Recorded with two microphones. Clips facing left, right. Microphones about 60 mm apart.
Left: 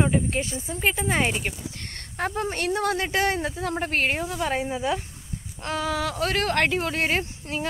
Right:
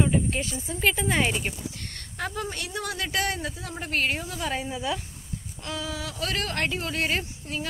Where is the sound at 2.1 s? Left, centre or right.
Left.